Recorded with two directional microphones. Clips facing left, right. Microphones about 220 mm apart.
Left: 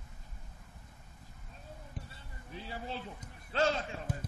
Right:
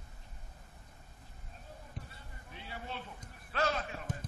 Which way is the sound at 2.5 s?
35° left (ahead or behind).